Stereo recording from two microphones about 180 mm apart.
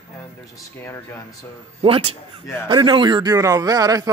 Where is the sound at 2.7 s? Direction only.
25° right (ahead or behind).